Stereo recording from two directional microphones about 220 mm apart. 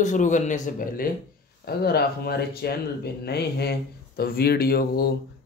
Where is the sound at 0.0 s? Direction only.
35° left (ahead or behind).